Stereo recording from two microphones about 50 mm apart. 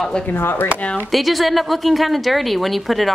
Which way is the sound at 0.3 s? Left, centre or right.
Left.